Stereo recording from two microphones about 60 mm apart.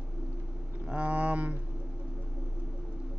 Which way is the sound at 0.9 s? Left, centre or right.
Centre.